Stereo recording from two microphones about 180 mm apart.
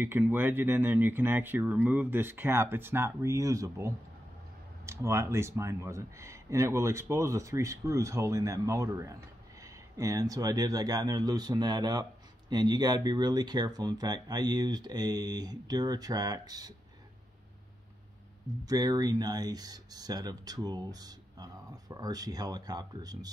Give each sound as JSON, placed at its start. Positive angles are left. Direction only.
{"t": 0.0, "sound": "speech", "side_deg": -15}
{"t": 18.7, "sound": "speech", "side_deg": -20}